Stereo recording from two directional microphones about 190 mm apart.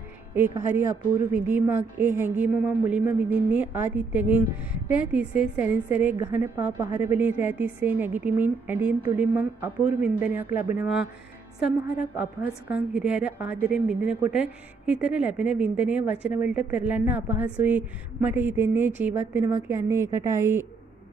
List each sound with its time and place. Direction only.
0.3 s a woman's voice: 10° right (ahead or behind)